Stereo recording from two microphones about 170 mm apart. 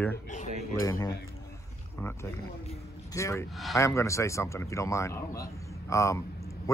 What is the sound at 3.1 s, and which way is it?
Speech, 15° left (ahead or behind).